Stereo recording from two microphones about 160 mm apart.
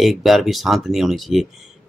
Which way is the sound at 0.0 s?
Centre (ahead or behind).